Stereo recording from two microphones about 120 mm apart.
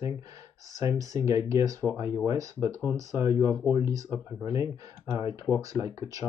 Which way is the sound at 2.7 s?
25° left (ahead or behind).